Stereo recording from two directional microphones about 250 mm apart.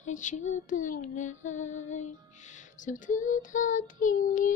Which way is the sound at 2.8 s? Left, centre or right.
Left.